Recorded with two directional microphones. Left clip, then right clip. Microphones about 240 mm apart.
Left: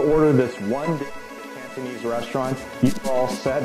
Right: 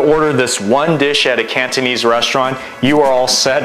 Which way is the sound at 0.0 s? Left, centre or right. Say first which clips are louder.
Right 6 dB; centre.